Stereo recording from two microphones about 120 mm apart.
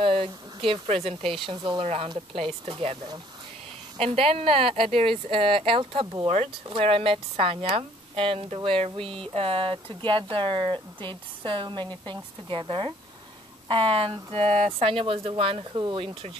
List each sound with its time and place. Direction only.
0.0 s speech: 50° right (ahead or behind)
1.8 s speech: 55° right (ahead or behind)
4.0 s speech: 55° right (ahead or behind)
9.0 s speech: 5° left (ahead or behind)
9.3 s speech: 50° right (ahead or behind)
14.3 s speech: 60° right (ahead or behind)
14.8 s speech: 50° right (ahead or behind)